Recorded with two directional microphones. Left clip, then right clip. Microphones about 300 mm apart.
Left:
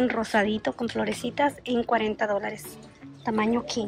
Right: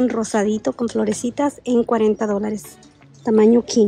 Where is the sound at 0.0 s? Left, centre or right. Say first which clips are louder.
Right 4 dB; centre.